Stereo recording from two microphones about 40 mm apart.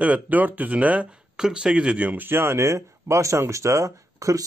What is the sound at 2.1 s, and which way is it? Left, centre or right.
Speech, right.